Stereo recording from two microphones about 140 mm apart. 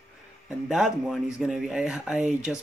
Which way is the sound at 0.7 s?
Centre (ahead or behind).